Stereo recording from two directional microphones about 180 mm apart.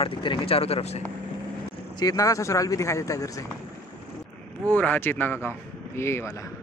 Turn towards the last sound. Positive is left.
turn(degrees=15)  # may be behind; listen again after turning